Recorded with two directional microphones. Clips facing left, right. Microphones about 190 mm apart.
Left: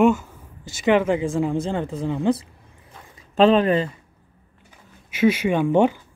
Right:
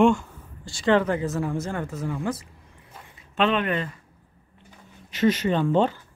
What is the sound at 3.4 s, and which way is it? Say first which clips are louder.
Speech: left 7 dB; 35° left (ahead or behind).